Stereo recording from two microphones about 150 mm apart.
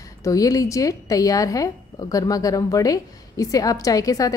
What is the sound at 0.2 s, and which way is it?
A woman's voice, 25° left (ahead or behind).